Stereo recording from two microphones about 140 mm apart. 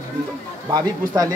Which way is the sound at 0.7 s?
30° right (ahead or behind).